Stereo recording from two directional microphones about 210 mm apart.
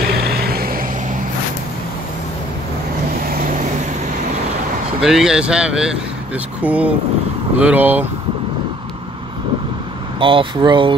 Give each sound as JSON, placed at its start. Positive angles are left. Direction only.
{"t": 0.0, "sound": "vehicle", "side_deg": -45}
{"t": 5.0, "sound": "speech", "side_deg": 0}
{"t": 10.1, "sound": "speech", "side_deg": -25}